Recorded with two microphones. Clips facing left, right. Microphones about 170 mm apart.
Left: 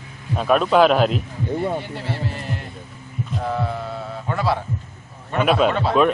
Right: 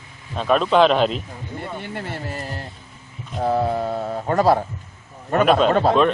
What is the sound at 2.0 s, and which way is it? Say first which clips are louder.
Music: left 2 dB; 35° right (ahead or behind).